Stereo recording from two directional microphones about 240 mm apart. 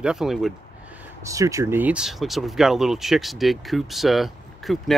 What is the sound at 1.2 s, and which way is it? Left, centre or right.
Speech, centre.